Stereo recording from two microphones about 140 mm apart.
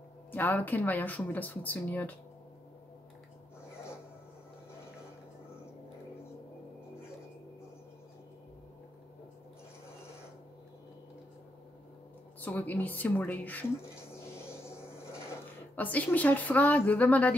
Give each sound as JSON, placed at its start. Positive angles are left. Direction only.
{"t": 0.3, "sound": "speech", "side_deg": 15}
{"t": 12.4, "sound": "speech", "side_deg": 10}
{"t": 14.3, "sound": "a sound", "side_deg": 20}
{"t": 15.7, "sound": "speech", "side_deg": 10}